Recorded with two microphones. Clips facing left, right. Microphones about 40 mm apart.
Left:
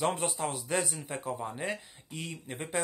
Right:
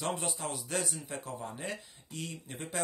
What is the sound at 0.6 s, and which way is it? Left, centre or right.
A man's voice, centre.